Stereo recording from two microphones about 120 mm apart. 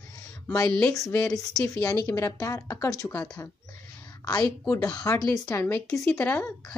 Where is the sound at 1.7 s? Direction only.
30° left (ahead or behind).